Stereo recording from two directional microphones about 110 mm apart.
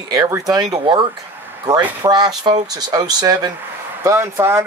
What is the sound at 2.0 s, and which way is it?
Speech, 40° right (ahead or behind).